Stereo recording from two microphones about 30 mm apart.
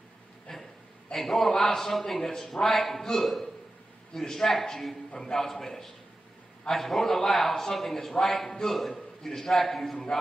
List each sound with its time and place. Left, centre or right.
0.5 s a sound: centre
1.1 s a man's voice: centre
9.2 s a man's voice: centre